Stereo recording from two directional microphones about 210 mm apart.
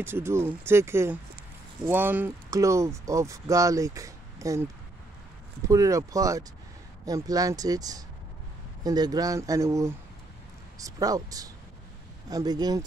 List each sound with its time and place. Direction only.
0.0 s speech: 10° right (ahead or behind)
5.7 s speech: 15° right (ahead or behind)